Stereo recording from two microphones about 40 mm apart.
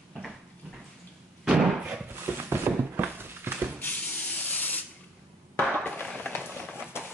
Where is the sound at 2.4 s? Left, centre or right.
Right.